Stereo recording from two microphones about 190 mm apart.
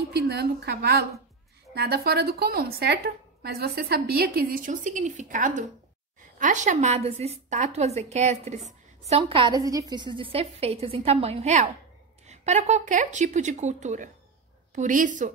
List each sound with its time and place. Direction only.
0.1 s a woman's voice: 60° right (ahead or behind); by 15.3 s 40° right (ahead or behind)